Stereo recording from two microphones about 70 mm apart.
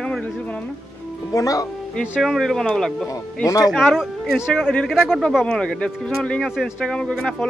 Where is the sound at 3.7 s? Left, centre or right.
Centre.